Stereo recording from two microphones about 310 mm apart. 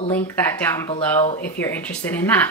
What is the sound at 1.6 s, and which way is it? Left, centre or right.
Speech, centre.